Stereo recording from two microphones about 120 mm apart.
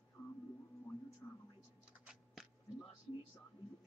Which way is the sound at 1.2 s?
25° left (ahead or behind).